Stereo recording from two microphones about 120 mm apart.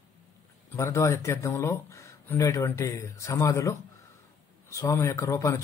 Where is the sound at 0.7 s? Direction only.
25° left (ahead or behind).